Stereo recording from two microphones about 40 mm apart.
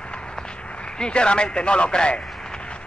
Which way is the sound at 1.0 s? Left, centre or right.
Left.